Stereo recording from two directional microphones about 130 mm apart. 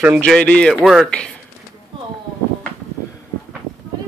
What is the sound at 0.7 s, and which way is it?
Speech, centre (ahead or behind).